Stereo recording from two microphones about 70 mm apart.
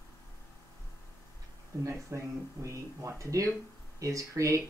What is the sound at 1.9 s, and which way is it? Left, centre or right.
Speech, right.